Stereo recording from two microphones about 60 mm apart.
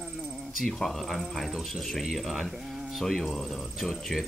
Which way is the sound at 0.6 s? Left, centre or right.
Centre.